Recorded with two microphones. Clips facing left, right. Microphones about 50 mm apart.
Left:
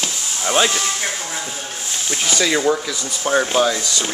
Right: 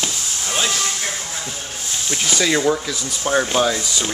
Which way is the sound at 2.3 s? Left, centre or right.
Centre.